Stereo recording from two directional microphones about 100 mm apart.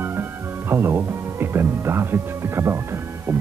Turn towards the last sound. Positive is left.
turn(degrees=-25)  # may be behind; listen again after turning